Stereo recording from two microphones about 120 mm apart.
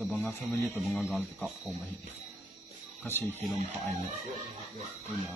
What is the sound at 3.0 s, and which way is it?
Speech, 15° left (ahead or behind).